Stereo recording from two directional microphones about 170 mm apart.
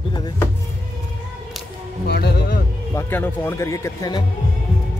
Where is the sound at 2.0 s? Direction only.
70° left (ahead or behind).